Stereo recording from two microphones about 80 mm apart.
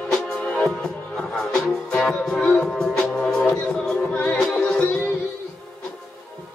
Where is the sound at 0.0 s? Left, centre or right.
Centre.